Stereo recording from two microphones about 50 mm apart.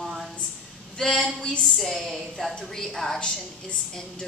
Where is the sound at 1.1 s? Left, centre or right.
Centre.